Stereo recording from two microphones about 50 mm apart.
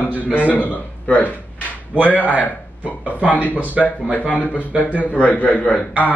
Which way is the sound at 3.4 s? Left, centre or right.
Left.